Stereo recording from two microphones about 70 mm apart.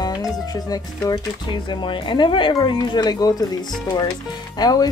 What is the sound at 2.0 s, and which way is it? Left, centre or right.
Speech, left.